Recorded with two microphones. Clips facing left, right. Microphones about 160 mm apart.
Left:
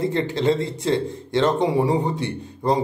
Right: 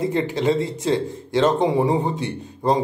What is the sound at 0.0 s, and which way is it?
Speech, 15° right (ahead or behind).